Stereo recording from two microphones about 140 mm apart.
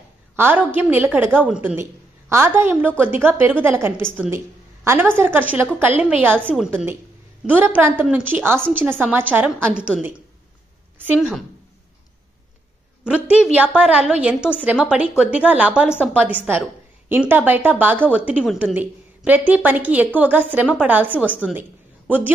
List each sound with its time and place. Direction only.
0.4 s a woman's voice: 15° right (ahead or behind)
6.3 s a woman's voice: 10° left (ahead or behind)
6.7 s a woman's voice: 15° right (ahead or behind)
11.1 s a woman's voice: centre (ahead or behind)
13.0 s a woman's voice: 10° right (ahead or behind)